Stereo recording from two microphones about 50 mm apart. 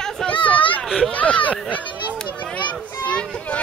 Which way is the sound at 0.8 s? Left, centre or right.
Centre.